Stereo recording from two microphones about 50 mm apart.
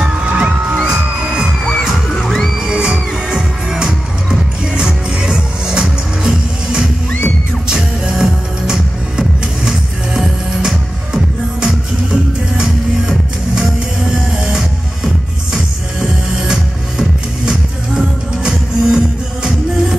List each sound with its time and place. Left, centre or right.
0.0 s music: right
1.7 s music: centre
2.6 s music: centre
7.1 s music: left
7.6 s music: centre
17.5 s music: centre